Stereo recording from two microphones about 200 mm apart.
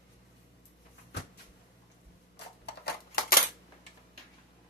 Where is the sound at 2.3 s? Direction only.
55° left (ahead or behind).